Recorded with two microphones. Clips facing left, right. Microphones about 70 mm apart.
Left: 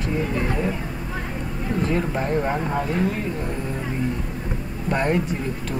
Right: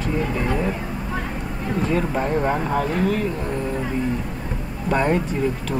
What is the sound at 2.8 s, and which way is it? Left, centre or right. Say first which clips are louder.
Speech: right 1 dB; right.